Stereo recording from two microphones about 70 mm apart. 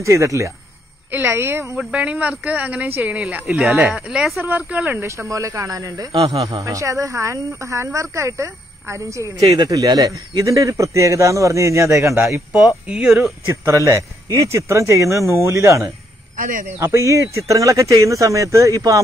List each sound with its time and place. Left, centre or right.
0.0 s speech: right
1.1 s a woman's voice: right
1.9 s speech: centre
3.5 s speech: centre
4.4 s a woman's voice: right
5.0 s speech: right
9.7 s speech: right
12.8 s speech: centre
13.5 s speech: right